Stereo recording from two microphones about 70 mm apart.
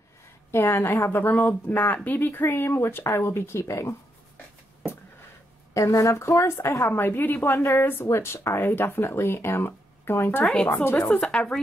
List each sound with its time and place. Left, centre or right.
0.5 s a woman's voice: left
1.2 s a woman's voice: left
5.8 s a woman's voice: left
6.1 s speech: left
6.9 s a woman's voice: left
10.4 s speech: centre
10.7 s a woman's voice: left
11.1 s speech: centre